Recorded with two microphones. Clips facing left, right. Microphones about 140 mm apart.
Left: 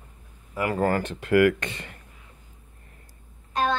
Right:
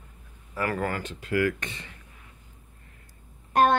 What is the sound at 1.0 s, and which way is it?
Speech, 65° left (ahead or behind).